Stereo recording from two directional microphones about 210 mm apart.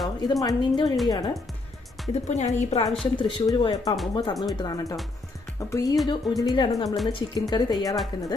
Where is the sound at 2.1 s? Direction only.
35° left (ahead or behind).